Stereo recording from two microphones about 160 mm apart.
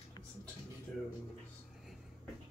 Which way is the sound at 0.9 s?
5° left (ahead or behind).